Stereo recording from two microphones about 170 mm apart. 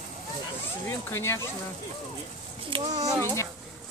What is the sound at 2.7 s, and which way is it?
Speech, 20° right (ahead or behind).